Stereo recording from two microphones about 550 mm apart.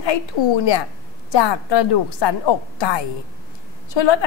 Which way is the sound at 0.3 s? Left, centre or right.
Left.